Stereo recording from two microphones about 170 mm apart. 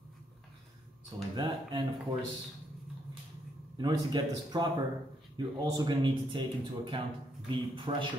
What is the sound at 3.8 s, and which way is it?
A man's voice, 25° right (ahead or behind).